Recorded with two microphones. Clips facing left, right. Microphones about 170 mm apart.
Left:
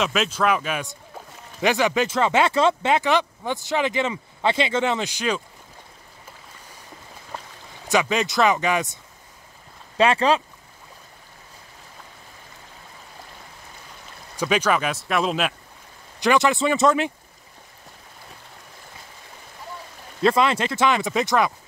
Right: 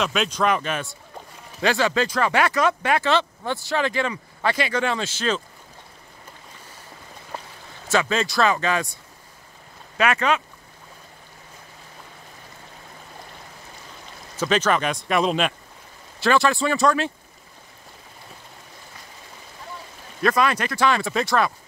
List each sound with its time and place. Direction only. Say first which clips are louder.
0.0 s speech: even; centre (ahead or behind)
1.6 s speech: left 1 dB; 20° left (ahead or behind)
7.9 s speech: left 1 dB; 15° left (ahead or behind)
9.9 s speech: left 3 dB; 30° left (ahead or behind)
14.3 s speech: even; 10° left (ahead or behind)
16.2 s speech: left 1 dB; 20° left (ahead or behind)
20.2 s speech: left 2 dB; 25° left (ahead or behind)